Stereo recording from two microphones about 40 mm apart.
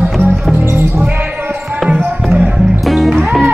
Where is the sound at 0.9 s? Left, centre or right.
Right.